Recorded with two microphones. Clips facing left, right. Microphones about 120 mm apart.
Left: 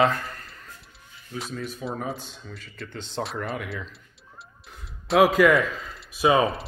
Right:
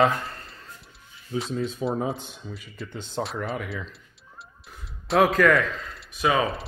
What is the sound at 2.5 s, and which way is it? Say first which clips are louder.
Speech: right 1 dB; 10° right (ahead or behind).